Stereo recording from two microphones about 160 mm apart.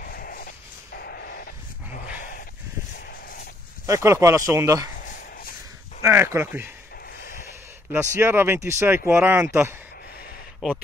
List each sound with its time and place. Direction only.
0.0 s dog: 65° left (ahead or behind)
0.9 s a sound: 80° left
2.1 s a sound: 60° left (ahead or behind)
3.8 s speech: 20° right (ahead or behind)
6.0 s speech: 15° right (ahead or behind)
7.9 s speech: 15° right (ahead or behind)